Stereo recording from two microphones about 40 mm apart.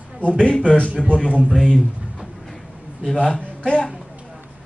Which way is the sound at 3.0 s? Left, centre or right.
Centre.